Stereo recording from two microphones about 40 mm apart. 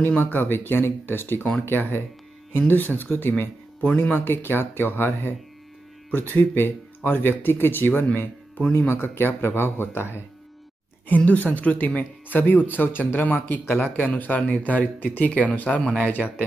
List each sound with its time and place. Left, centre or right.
0.3 s speech: left
2.7 s speech: left
3.8 s speech: left
4.1 s speech: left
6.0 s speech: left
7.0 s speech: left
7.2 s speech: left
8.7 s speech: left
11.1 s speech: left
12.3 s speech: left
13.2 s speech: left
16.1 s speech: left